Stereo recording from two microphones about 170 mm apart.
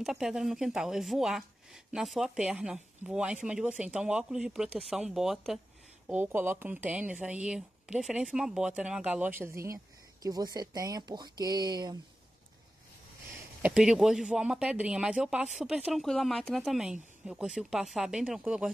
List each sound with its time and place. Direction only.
0.0 s speech: 5° right (ahead or behind); by 12.0 s 25° right (ahead or behind)
13.6 s speech: 5° right (ahead or behind)